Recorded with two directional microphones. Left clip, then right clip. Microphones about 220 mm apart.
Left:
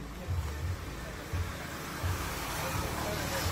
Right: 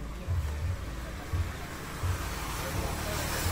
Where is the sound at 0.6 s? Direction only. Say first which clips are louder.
Even; 50° left (ahead or behind); by 2.5 s 35° left (ahead or behind).